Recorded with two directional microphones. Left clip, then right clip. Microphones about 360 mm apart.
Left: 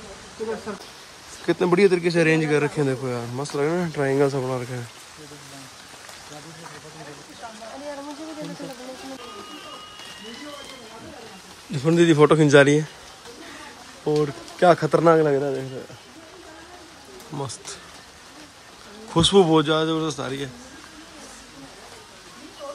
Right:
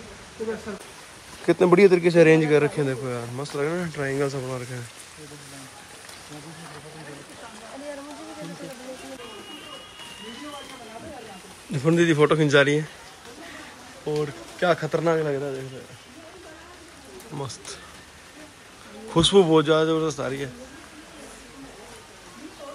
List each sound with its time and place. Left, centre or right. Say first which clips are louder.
1.4 s a man's voice: right 2 dB; centre
11.7 s a man's voice: left 2 dB; centre
14.0 s speech: left 5 dB; centre
19.1 s a man's voice: left 1 dB; centre